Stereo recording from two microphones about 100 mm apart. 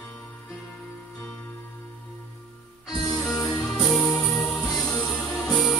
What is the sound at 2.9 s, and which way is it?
Music, centre (ahead or behind).